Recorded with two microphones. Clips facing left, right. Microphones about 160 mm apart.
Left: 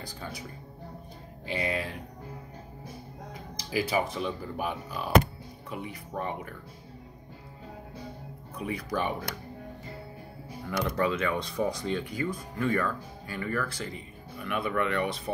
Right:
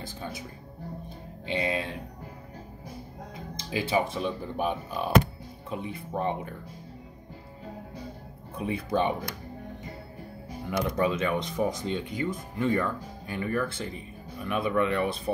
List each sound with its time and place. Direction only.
1.5 s speech: 25° right (ahead or behind)
3.5 s speech: 25° right (ahead or behind)
8.5 s speech: 25° right (ahead or behind)
10.6 s speech: 20° right (ahead or behind)